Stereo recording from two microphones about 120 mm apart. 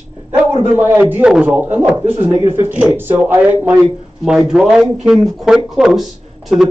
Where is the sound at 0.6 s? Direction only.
15° right (ahead or behind).